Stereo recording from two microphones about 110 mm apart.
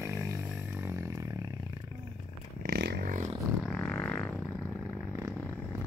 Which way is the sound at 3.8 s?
15° left (ahead or behind).